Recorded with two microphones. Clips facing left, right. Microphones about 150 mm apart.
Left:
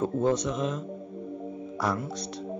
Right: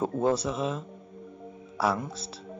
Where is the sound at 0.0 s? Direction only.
10° right (ahead or behind).